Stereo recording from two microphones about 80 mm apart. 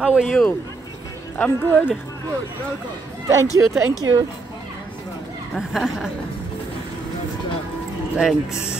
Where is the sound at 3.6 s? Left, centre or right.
Right.